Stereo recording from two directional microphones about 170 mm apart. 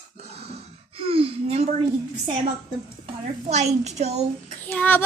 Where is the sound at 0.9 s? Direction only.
35° right (ahead or behind).